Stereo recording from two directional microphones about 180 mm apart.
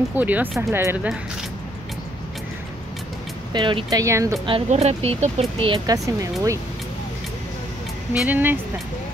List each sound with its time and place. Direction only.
0.1 s speech: 10° right (ahead or behind)
3.5 s speech: 25° right (ahead or behind)
4.6 s speech: 35° right (ahead or behind)
8.1 s speech: 10° right (ahead or behind)